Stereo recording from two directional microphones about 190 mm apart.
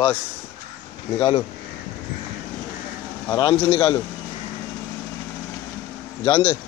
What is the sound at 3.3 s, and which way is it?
Speech, 30° left (ahead or behind).